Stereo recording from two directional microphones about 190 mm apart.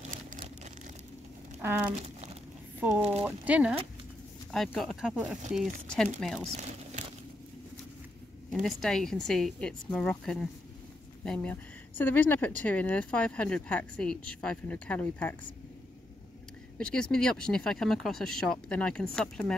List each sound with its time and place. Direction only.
1.6 s speech: 10° right (ahead or behind)
6.5 s crumpling: 35° right (ahead or behind)
8.5 s speech: centre (ahead or behind)
16.7 s speech: 5° left (ahead or behind)